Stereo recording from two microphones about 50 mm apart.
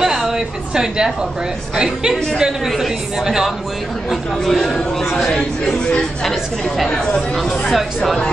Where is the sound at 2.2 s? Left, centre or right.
Centre.